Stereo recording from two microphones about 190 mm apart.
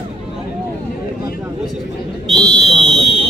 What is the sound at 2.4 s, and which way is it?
Buzzer, 35° left (ahead or behind).